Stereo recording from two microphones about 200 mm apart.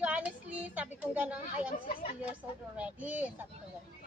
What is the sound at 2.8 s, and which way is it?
Speech, 5° right (ahead or behind).